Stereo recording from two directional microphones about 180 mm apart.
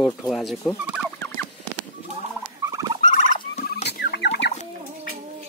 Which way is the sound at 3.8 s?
60° left (ahead or behind).